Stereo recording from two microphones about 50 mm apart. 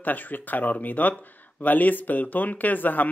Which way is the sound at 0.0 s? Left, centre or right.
Left.